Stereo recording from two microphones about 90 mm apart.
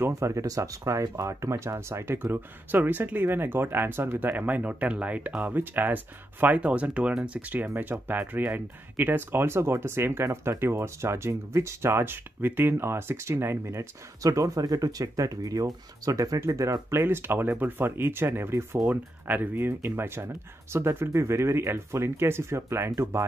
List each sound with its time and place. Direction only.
0.0 s speech: 35° right (ahead or behind)
18.9 s speech: 20° right (ahead or behind)